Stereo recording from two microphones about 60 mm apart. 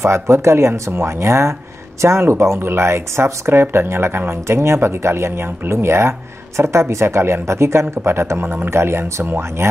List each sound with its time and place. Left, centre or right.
0.0 s speech: right